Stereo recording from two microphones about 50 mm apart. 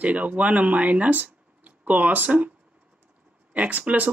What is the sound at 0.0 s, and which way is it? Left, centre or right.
Speech, right.